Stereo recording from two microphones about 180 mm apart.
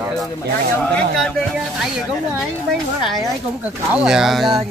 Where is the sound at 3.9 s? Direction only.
5° right (ahead or behind).